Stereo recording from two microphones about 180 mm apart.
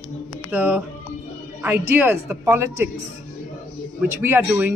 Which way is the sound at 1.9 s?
10° right (ahead or behind).